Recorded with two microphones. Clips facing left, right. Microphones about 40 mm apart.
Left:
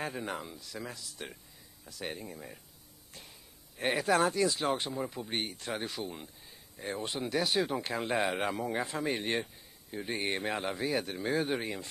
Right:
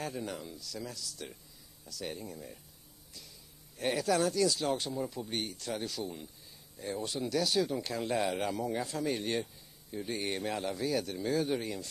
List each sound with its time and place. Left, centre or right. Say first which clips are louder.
0.0 s speech: left 2 dB; left